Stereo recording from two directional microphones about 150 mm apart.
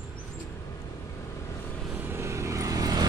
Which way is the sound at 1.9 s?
15° right (ahead or behind).